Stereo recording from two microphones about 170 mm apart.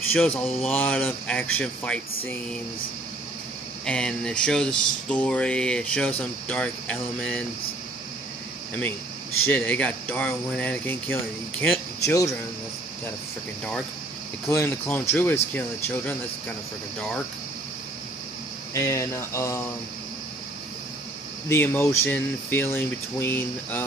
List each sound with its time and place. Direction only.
0.1 s speech: 5° left (ahead or behind)
3.8 s speech: 5° left (ahead or behind)
9.5 s speech: 10° left (ahead or behind)
14.5 s speech: 15° left (ahead or behind)
18.7 s speech: 15° left (ahead or behind)
21.5 s speech: 15° left (ahead or behind)